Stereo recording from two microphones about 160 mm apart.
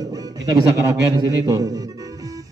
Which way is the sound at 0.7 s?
20° right (ahead or behind).